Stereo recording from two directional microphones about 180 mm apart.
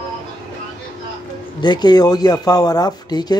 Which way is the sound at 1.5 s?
25° left (ahead or behind).